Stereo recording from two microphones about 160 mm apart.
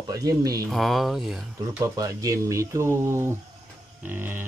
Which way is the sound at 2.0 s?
20° right (ahead or behind).